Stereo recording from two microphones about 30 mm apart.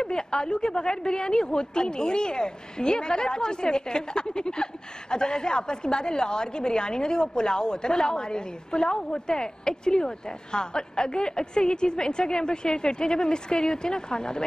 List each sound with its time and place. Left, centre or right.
0.0 s a woman's voice: left